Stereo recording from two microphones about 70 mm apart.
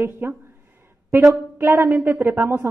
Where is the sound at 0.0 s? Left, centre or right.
Right.